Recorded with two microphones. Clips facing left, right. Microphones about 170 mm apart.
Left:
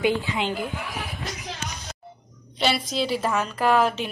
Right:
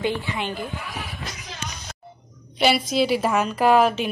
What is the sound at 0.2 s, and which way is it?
Speech, 20° left (ahead or behind).